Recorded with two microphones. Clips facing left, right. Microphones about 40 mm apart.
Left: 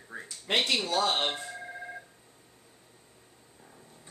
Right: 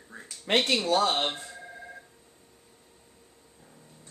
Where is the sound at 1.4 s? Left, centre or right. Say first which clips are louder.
Left 3 dB; centre.